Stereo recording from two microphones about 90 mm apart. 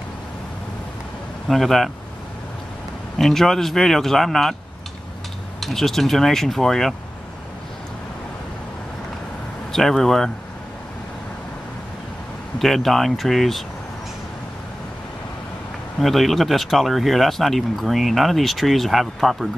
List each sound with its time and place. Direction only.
1.5 s speech: centre (ahead or behind)
3.2 s speech: 5° left (ahead or behind)
5.6 s speech: 5° left (ahead or behind)
9.7 s speech: 5° left (ahead or behind)
12.5 s speech: centre (ahead or behind)
16.0 s speech: centre (ahead or behind)